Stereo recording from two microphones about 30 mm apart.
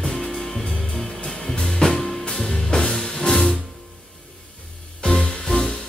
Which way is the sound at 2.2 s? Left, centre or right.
Left.